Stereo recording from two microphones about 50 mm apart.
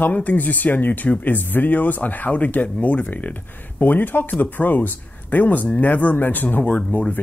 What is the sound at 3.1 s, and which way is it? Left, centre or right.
Speech, left.